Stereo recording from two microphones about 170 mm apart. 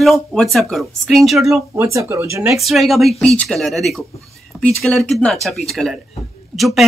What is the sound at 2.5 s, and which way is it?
Speech, centre (ahead or behind).